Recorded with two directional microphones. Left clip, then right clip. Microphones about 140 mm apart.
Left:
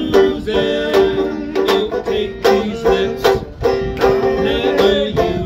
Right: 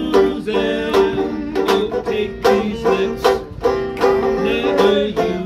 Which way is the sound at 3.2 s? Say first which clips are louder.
Left 1 dB; 25° left (ahead or behind).